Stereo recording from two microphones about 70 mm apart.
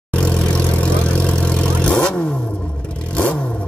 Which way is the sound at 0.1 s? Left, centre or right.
Centre.